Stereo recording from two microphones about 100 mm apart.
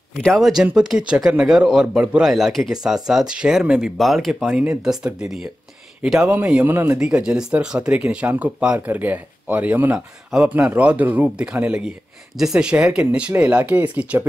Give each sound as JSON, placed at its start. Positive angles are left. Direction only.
{"t": 0.2, "sound": "speech", "side_deg": 0}
{"t": 6.3, "sound": "speech", "side_deg": -15}
{"t": 7.0, "sound": "speech", "side_deg": -10}